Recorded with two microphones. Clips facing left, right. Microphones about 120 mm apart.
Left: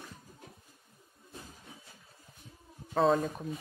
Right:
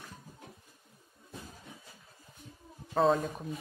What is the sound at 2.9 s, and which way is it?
Speech, centre (ahead or behind).